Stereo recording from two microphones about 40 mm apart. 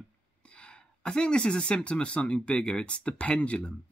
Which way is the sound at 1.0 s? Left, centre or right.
Left.